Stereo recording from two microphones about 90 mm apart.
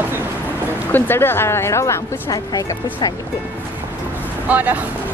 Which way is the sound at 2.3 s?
45° left (ahead or behind).